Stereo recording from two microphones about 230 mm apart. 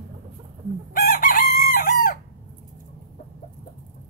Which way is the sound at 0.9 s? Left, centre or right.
Left.